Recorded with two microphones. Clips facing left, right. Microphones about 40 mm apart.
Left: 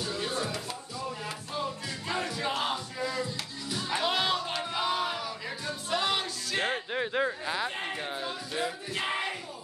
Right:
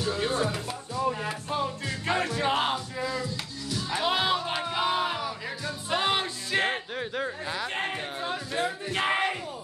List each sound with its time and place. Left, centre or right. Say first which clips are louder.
0.1 s music: right 7 dB; right
2.0 s music: right 5 dB; right
3.9 s music: right 2 dB; centre; by 6.8 s right
6.9 s a sound: left 2 dB; centre
8.3 s music: right 4 dB; right